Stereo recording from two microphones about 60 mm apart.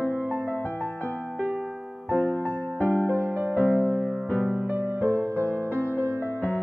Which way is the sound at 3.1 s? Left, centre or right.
Right.